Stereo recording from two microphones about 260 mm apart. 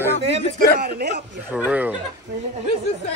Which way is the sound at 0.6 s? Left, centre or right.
Right.